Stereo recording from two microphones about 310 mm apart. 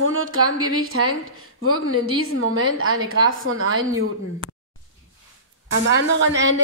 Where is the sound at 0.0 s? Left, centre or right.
Right.